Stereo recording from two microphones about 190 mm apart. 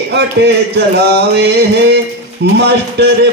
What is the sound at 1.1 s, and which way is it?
Music, 60° right (ahead or behind).